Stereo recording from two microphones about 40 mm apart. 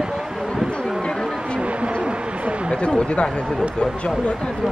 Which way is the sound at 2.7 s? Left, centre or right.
Left.